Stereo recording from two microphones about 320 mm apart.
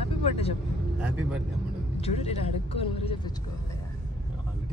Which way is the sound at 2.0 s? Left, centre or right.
Centre.